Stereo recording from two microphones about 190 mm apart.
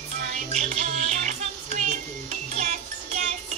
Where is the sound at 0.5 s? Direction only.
40° right (ahead or behind).